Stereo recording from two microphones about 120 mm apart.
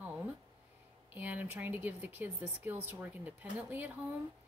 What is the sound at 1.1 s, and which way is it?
Speech, 15° right (ahead or behind).